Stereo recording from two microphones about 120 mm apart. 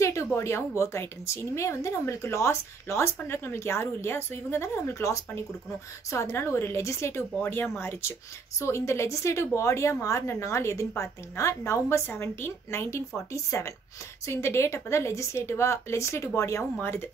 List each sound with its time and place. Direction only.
0.0 s a woman's voice: 25° left (ahead or behind)